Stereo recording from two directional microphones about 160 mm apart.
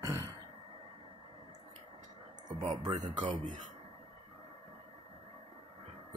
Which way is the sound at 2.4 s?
30° right (ahead or behind).